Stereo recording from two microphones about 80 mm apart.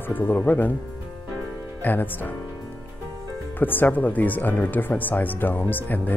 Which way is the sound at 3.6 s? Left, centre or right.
Left.